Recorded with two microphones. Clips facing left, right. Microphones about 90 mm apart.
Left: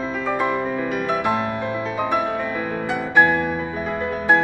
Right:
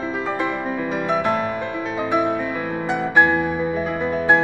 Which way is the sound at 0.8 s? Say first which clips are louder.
Even; 25° right (ahead or behind).